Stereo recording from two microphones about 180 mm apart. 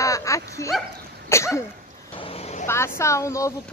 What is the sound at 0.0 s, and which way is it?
Dog, 15° left (ahead or behind).